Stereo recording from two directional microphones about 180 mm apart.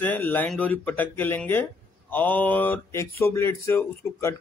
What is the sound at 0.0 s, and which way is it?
Speech, 10° left (ahead or behind).